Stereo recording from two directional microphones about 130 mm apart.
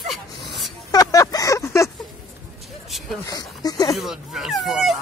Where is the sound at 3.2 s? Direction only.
25° left (ahead or behind).